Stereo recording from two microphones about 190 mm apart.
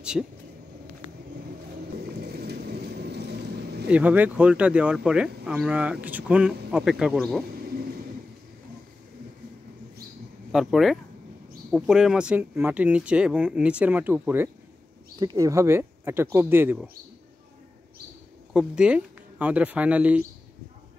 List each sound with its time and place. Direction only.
0.2 s speech: centre (ahead or behind)
2.1 s a sound: 55° right (ahead or behind)
3.9 s speech: 10° right (ahead or behind)
10.5 s speech: centre (ahead or behind)
18.5 s speech: 5° right (ahead or behind)